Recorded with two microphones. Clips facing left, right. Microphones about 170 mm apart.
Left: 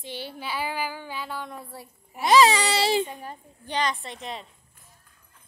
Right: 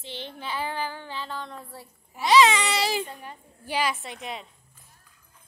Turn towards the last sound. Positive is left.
turn(degrees=0)  # may be behind; listen again after turning